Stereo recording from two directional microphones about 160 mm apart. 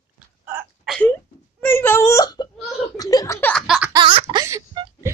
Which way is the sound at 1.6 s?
15° left (ahead or behind).